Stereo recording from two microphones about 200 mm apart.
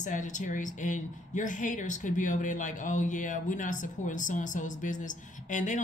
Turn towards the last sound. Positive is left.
turn(degrees=40)  # may be behind; listen again after turning